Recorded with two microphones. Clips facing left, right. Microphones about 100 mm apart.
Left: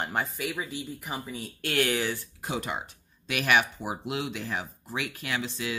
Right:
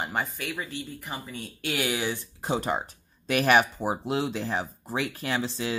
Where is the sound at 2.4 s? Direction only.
35° right (ahead or behind).